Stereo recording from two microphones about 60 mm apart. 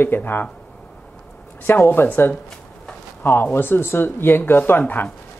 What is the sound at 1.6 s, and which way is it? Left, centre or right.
Speech, left.